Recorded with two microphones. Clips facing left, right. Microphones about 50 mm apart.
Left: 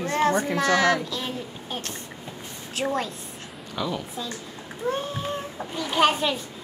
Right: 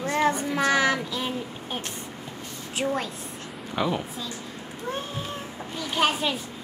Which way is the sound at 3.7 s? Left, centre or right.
Right.